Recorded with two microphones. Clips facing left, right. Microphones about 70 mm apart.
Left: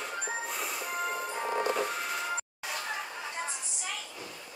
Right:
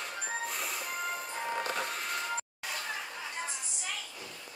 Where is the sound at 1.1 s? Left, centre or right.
Centre.